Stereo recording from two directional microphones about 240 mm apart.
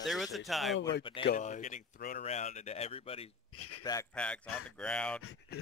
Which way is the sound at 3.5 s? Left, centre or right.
Left.